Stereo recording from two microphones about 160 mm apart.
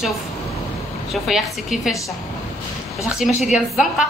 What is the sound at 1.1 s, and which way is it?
Speech, centre (ahead or behind).